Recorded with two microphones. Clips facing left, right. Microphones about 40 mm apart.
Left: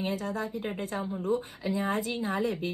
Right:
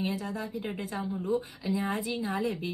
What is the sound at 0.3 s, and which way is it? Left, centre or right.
A woman's voice, left.